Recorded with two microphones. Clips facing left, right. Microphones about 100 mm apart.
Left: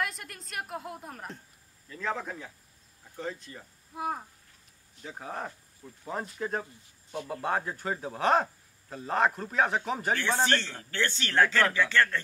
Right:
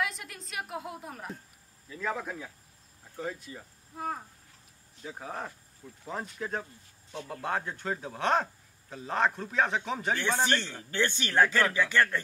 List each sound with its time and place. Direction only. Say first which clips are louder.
0.0 s a woman's voice: right 1 dB; centre (ahead or behind)
3.9 s speech: left 2 dB; 10° left (ahead or behind)
10.4 s speech: left 1 dB; 15° right (ahead or behind)